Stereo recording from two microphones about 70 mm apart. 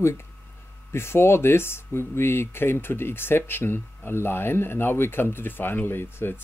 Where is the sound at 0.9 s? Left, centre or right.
Left.